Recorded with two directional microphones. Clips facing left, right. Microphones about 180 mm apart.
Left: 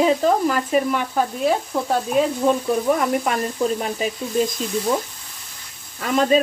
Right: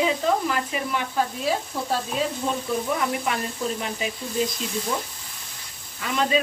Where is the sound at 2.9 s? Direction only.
50° left (ahead or behind).